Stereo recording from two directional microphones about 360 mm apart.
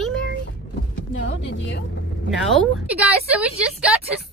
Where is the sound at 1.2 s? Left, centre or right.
Left.